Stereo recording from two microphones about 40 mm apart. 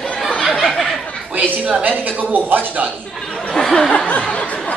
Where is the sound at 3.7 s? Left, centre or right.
Left.